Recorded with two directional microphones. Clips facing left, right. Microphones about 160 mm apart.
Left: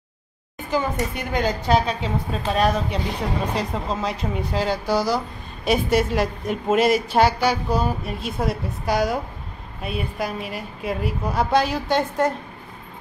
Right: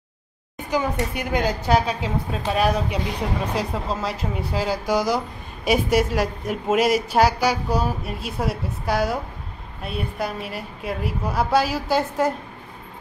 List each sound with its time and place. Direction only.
0.7 s a woman's voice: 10° right (ahead or behind)
4.9 s a woman's voice: 15° right (ahead or behind)